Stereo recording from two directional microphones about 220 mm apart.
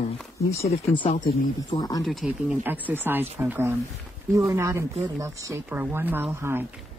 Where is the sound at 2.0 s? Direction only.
Centre (ahead or behind).